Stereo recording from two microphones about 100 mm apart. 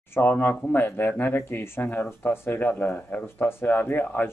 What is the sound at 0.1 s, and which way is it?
Speech, 20° left (ahead or behind).